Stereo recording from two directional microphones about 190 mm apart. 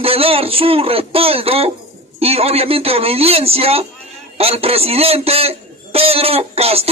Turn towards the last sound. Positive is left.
turn(degrees=-30)  # may be behind; listen again after turning